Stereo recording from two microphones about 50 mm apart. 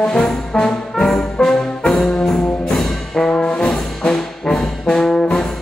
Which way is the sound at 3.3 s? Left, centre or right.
Left.